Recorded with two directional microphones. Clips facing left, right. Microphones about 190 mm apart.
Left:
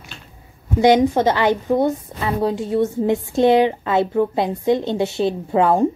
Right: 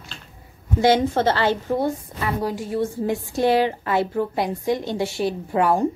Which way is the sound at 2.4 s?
25° left (ahead or behind).